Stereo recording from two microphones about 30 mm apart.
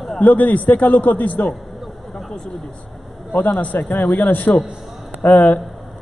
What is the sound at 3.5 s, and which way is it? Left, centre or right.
A man's voice, left.